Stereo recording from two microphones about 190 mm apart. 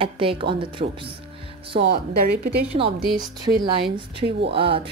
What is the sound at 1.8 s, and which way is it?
Speech, 55° right (ahead or behind).